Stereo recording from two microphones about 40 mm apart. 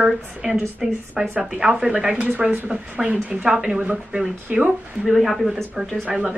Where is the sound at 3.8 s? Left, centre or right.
Right.